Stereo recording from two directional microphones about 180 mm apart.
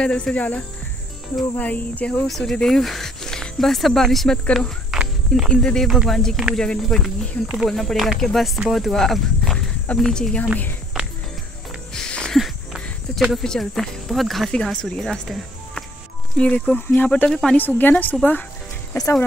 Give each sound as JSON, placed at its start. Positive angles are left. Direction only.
{"t": 0.0, "sound": "speech", "side_deg": 5}
{"t": 10.9, "sound": "music", "side_deg": 0}
{"t": 11.9, "sound": "a sound", "side_deg": 5}
{"t": 16.3, "sound": "speech", "side_deg": 5}